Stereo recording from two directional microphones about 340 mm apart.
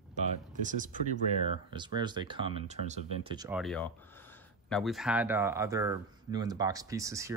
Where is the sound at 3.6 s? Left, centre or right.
Centre.